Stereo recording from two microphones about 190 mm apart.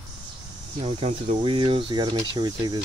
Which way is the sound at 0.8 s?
35° right (ahead or behind).